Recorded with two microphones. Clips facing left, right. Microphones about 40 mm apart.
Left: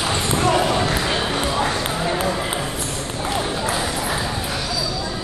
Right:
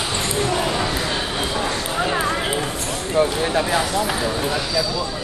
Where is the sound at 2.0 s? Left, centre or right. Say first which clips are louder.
Right 1 dB; right.